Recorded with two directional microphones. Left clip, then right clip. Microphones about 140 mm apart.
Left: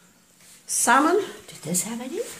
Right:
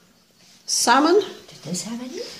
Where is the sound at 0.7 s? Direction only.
65° right (ahead or behind).